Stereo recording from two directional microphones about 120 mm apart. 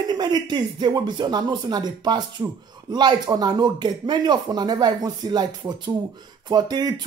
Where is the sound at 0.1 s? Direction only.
35° right (ahead or behind).